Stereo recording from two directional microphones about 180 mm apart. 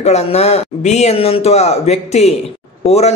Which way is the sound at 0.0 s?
35° left (ahead or behind).